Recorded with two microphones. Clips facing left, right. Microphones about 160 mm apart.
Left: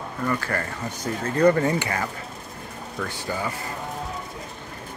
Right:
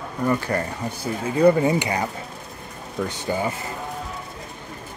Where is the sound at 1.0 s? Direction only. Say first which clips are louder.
Right 2 dB; 10° right (ahead or behind).